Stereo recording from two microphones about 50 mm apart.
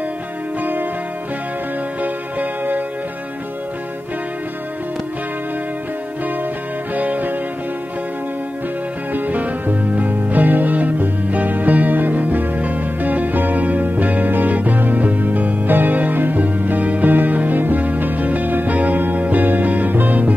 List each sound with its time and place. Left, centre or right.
2.0 s music: right
7.0 s music: right
9.1 s music: right